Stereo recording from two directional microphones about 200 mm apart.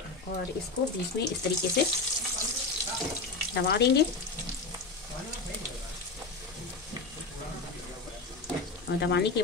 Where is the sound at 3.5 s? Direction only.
55° left (ahead or behind).